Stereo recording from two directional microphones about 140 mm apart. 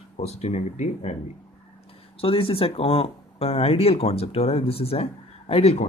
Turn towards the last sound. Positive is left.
turn(degrees=45)  # may be behind; listen again after turning